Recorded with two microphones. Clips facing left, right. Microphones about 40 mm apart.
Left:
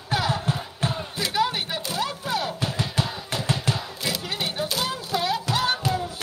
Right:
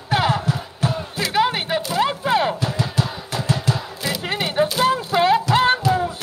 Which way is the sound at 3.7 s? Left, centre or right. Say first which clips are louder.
Right 4 dB; left.